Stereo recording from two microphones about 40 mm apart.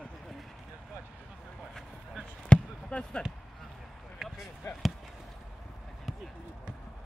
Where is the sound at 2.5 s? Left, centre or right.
Left.